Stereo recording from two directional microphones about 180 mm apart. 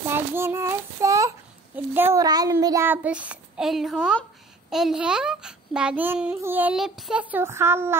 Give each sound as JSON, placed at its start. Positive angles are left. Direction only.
{"t": 0.1, "sound": "child singing", "side_deg": -15}
{"t": 2.0, "sound": "a child's voice", "side_deg": -15}